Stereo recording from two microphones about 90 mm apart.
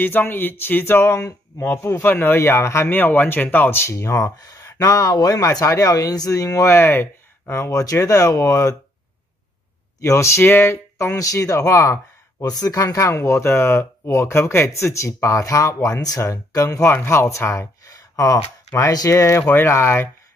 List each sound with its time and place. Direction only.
0.0 s speech: 20° left (ahead or behind); by 6.7 s 40° left (ahead or behind)
6.7 s speech: 25° left (ahead or behind)
9.9 s speech: 35° left (ahead or behind)